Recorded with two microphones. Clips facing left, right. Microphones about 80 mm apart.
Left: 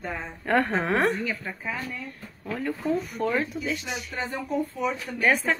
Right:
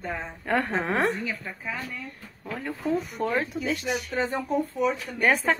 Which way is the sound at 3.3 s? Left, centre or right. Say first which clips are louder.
Even; right.